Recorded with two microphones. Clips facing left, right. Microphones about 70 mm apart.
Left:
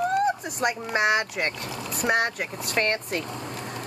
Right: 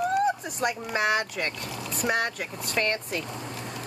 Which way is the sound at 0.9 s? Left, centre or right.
Centre.